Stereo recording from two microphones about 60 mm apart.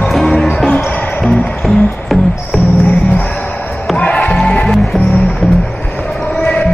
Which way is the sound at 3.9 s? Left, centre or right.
Centre.